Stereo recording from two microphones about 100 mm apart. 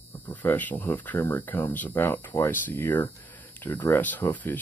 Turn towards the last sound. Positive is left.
turn(degrees=15)  # may be behind; listen again after turning